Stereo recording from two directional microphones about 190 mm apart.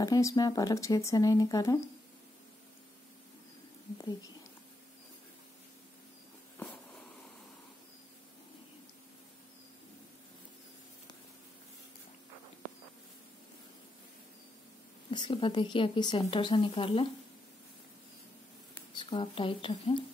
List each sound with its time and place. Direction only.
0.0 s speech: 15° left (ahead or behind)
15.0 s speech: 25° left (ahead or behind)
18.9 s speech: 25° left (ahead or behind)